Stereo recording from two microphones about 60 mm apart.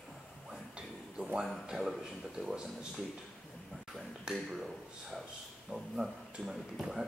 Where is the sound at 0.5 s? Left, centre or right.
Centre.